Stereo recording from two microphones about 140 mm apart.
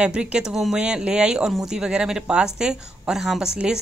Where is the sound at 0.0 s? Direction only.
5° right (ahead or behind).